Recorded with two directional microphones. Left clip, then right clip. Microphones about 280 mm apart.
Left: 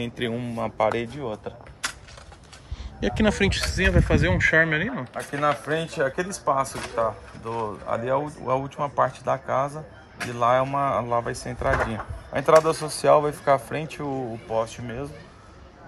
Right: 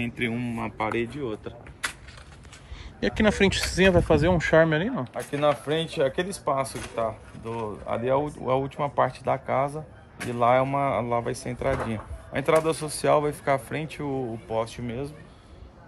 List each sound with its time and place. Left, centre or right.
0.3 s a man's voice: centre
0.8 s speech: left
3.0 s speech: centre